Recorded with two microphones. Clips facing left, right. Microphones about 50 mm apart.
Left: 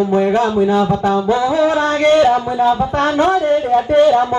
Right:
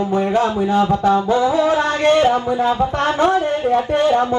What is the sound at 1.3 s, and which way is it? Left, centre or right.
Speech, left.